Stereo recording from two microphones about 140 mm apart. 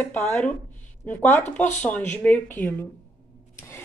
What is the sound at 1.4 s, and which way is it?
Speech, 55° left (ahead or behind).